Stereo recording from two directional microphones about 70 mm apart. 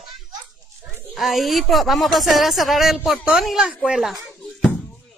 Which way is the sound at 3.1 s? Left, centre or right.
Centre.